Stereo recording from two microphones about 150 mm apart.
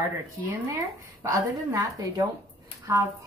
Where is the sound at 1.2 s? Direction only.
20° right (ahead or behind).